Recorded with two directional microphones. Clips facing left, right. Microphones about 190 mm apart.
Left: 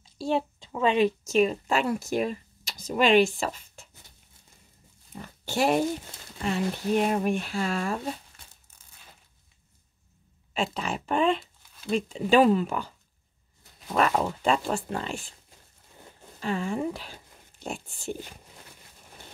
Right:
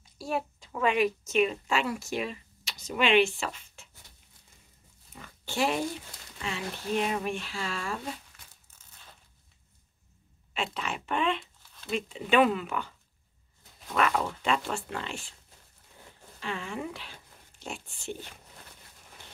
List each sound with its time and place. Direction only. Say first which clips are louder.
0.0 s a sound: left 5 dB; 25° left (ahead or behind)
1.3 s speech: left 3 dB; 40° left (ahead or behind)
5.2 s pig: left 4 dB; 40° left (ahead or behind)
6.3 s speech: left 8 dB; 45° left (ahead or behind)
10.5 s speech: left 4 dB; 40° left (ahead or behind)
13.9 s speech: left 3 dB; 35° left (ahead or behind)
16.3 s speech: left 7 dB; 40° left (ahead or behind)